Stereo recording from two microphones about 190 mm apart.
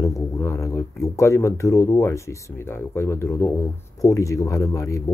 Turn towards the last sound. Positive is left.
turn(degrees=15)  # may be behind; listen again after turning